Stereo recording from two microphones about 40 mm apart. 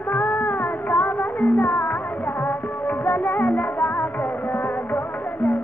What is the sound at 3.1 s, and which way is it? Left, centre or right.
Music, left.